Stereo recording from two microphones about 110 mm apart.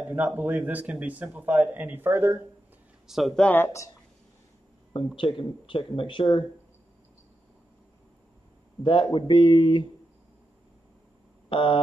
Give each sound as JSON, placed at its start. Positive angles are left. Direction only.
{"t": 0.0, "sound": "speech", "side_deg": -15}
{"t": 3.1, "sound": "speech", "side_deg": 0}
{"t": 3.4, "sound": "speech", "side_deg": 20}
{"t": 4.9, "sound": "speech", "side_deg": 50}
{"t": 8.8, "sound": "speech", "side_deg": 45}
{"t": 11.4, "sound": "a sound", "side_deg": 50}